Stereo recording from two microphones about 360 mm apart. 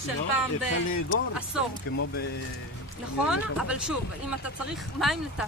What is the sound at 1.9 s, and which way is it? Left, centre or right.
Speech, left.